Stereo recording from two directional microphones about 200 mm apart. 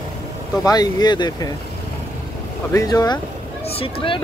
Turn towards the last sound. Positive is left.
turn(degrees=25)  # may be behind; listen again after turning